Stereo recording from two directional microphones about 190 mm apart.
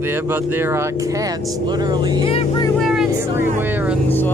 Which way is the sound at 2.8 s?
Centre (ahead or behind).